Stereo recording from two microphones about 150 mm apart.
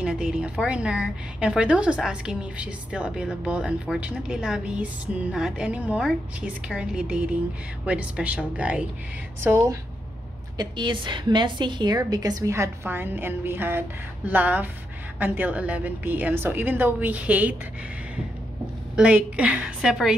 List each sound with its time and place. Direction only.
0.0 s a woman's voice: 5° right (ahead or behind)
10.6 s a woman's voice: 30° right (ahead or behind); by 17.6 s 10° right (ahead or behind)
18.9 s a woman's voice: 10° right (ahead or behind)